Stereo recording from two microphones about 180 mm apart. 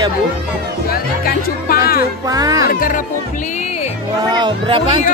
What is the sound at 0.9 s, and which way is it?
Speech, 55° left (ahead or behind).